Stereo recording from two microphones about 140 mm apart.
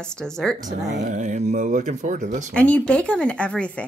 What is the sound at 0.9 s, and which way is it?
Speech, 60° right (ahead or behind).